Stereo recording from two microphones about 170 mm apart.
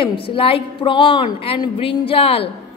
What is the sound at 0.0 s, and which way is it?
A woman's voice, 30° left (ahead or behind).